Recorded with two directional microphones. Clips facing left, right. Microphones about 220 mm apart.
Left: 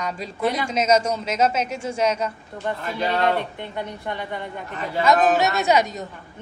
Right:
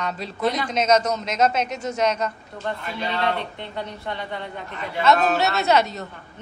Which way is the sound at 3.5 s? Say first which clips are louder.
Left 1 dB; 15° left (ahead or behind).